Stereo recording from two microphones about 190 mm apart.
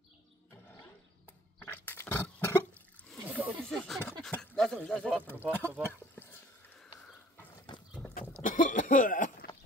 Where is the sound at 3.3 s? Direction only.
5° right (ahead or behind).